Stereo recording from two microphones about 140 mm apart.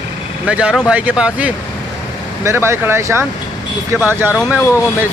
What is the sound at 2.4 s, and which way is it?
Speech, 20° right (ahead or behind).